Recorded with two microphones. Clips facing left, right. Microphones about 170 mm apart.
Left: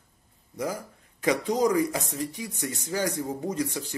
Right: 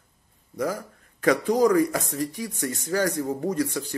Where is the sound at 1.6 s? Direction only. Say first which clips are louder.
Right 4 dB; 15° left (ahead or behind).